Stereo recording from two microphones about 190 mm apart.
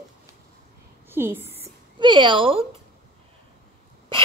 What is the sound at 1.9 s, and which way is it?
Speech, 25° right (ahead or behind).